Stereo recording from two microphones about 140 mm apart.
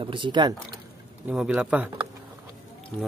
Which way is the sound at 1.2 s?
10° right (ahead or behind).